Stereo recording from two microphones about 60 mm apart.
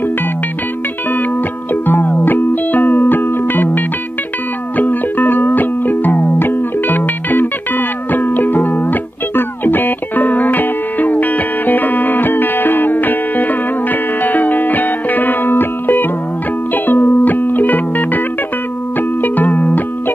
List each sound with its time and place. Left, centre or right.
1.9 s music: left